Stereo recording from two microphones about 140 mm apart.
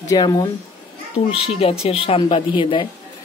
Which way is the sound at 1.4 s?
45° left (ahead or behind).